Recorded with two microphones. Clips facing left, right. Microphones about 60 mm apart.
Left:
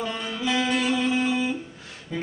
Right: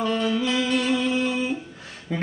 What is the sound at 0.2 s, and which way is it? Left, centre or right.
Music, centre.